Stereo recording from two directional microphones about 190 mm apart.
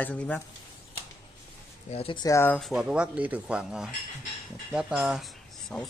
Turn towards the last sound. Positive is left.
turn(degrees=0)  # may be behind; listen again after turning